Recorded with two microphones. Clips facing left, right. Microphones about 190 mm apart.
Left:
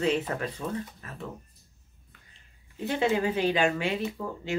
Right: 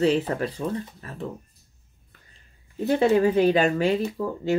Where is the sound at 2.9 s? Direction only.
40° right (ahead or behind).